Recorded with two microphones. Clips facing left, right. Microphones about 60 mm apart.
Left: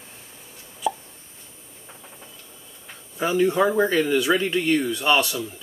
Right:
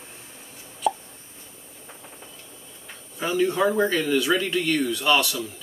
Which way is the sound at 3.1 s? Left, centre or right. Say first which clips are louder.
Left 3 dB; centre.